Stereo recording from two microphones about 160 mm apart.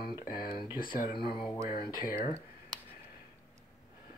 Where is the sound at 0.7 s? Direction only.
60° left (ahead or behind).